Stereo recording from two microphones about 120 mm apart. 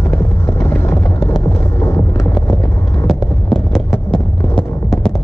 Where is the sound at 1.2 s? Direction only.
30° left (ahead or behind).